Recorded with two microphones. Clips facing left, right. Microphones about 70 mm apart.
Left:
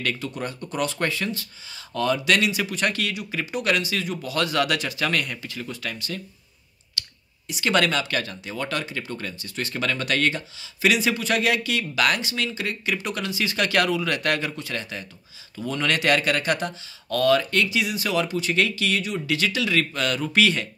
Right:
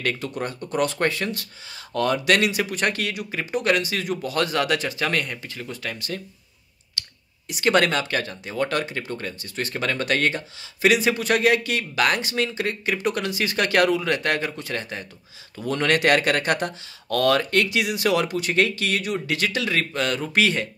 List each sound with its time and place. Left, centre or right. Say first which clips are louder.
0.0 s speech: right 2 dB; right
5.9 s speech: right 2 dB; right
7.4 s speech: right 4 dB; right
7.7 s speech: even; right
15.6 s speech: right 3 dB; right
18.5 s speech: right 2 dB; right